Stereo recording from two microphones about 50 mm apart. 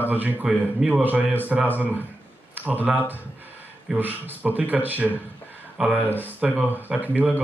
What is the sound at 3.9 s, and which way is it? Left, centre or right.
Speech, centre.